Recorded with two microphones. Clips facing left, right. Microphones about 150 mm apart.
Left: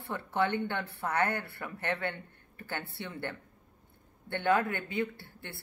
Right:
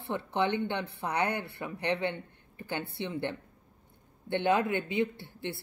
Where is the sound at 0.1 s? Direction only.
20° right (ahead or behind).